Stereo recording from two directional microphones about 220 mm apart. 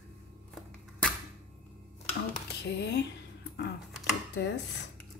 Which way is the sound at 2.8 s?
50° left (ahead or behind).